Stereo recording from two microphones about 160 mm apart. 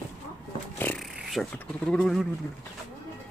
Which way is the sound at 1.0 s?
Centre (ahead or behind).